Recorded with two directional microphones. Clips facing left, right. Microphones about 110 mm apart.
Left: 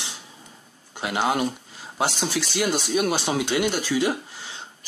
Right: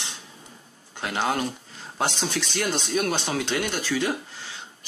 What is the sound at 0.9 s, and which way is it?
Speech, 15° left (ahead or behind).